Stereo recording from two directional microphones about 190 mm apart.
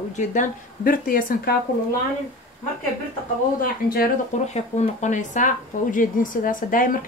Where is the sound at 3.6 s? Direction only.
50° left (ahead or behind).